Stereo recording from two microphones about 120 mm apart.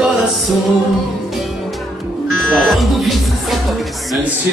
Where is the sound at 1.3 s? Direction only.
Centre (ahead or behind).